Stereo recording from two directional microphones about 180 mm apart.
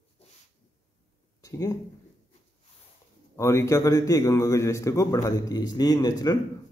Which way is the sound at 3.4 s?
15° left (ahead or behind).